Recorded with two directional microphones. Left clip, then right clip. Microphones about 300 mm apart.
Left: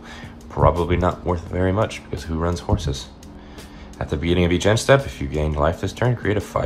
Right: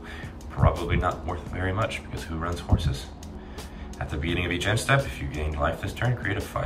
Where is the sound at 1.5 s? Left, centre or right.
Centre.